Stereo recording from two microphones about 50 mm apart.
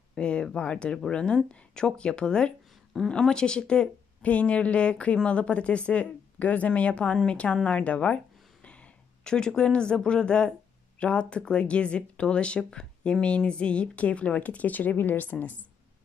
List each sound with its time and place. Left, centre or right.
0.1 s speech: centre
9.2 s speech: centre; by 15.5 s left